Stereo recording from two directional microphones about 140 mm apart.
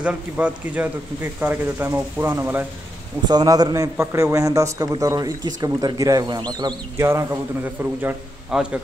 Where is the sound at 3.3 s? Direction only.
30° right (ahead or behind).